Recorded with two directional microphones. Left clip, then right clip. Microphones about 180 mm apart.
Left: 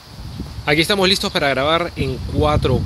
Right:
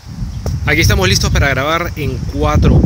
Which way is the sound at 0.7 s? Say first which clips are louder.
Right 2 dB; centre (ahead or behind).